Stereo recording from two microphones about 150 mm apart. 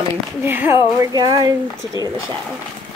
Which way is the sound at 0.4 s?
15° right (ahead or behind).